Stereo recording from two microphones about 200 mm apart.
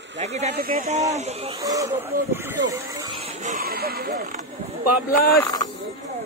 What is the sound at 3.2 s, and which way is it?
Speech, 35° right (ahead or behind).